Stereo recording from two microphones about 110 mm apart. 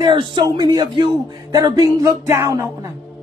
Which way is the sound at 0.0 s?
45° right (ahead or behind).